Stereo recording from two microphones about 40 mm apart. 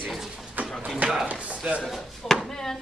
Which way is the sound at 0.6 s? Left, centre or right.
Right.